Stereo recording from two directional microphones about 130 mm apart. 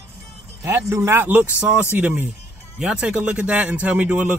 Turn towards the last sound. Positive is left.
turn(degrees=-10)  # may be behind; listen again after turning